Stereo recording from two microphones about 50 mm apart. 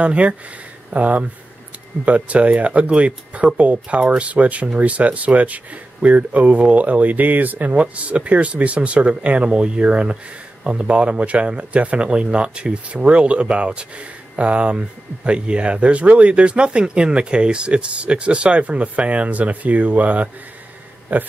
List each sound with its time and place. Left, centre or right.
0.0 s speech: right
7.7 s speech: right